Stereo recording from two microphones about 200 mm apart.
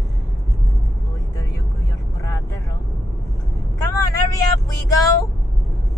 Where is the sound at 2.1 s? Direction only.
15° left (ahead or behind).